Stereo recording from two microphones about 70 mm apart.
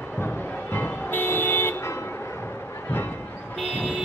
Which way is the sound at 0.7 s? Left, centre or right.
Left.